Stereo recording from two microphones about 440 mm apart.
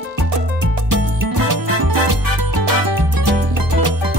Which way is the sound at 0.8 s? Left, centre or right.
Right.